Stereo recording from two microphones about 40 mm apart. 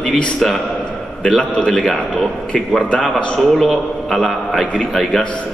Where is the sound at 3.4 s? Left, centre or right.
Centre.